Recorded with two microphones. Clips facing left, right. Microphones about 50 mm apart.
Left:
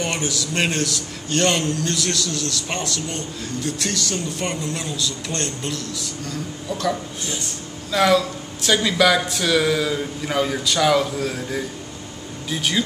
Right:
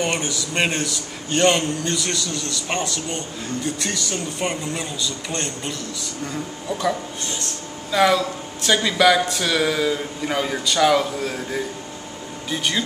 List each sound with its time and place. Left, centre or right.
0.0 s a man's voice: centre
6.7 s a man's voice: right
7.9 s speech: centre